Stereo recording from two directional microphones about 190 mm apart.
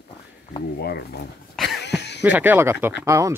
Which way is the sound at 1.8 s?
65° left (ahead or behind).